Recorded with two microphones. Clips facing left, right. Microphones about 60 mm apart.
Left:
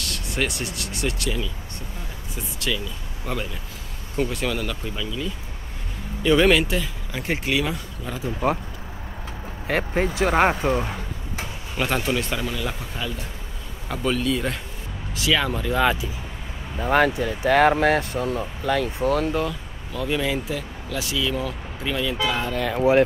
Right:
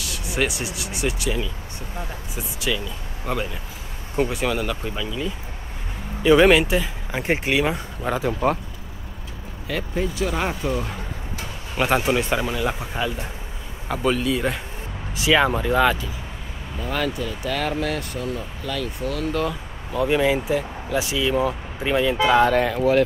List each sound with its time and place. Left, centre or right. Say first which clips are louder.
0.0 s speech: right 2 dB; centre; by 7.8 s right
8.0 s speech: right 8 dB; right
9.7 s speech: left 3 dB; left
11.7 s speech: right 4 dB; centre
13.8 s speech: right 2 dB; centre
15.1 s speech: right 4 dB; right
15.7 s speech: even; centre
16.8 s speech: left 6 dB; left
19.9 s speech: right 5 dB; centre
22.8 s speech: left 4 dB; left